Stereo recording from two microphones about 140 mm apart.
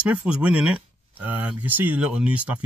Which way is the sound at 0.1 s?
10° right (ahead or behind).